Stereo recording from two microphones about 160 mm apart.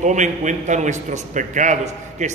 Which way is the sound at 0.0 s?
50° right (ahead or behind).